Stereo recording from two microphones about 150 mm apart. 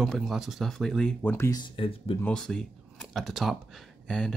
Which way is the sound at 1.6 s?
35° left (ahead or behind).